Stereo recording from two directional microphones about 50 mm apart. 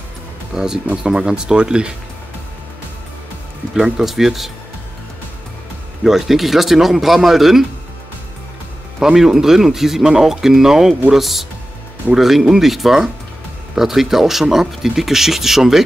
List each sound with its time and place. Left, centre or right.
0.5 s speech: centre
3.7 s speech: centre
6.0 s speech: centre
9.0 s speech: centre